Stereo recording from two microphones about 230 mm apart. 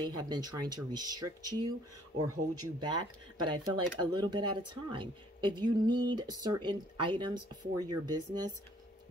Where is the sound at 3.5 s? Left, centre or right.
Centre.